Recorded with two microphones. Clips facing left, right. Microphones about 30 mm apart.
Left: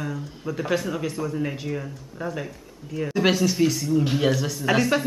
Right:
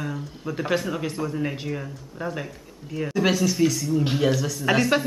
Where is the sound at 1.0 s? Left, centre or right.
Centre.